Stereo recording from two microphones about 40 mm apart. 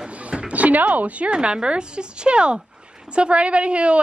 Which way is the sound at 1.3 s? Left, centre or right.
Right.